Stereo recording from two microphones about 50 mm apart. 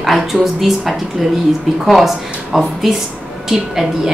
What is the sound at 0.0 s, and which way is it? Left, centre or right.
A woman's voice, centre.